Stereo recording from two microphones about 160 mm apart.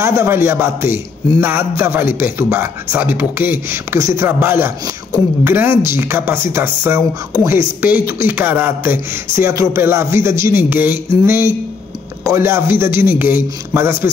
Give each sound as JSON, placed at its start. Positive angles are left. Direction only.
{"t": 0.0, "sound": "speech", "side_deg": -15}